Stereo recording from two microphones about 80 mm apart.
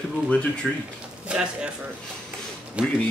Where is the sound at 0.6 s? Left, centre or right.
Centre.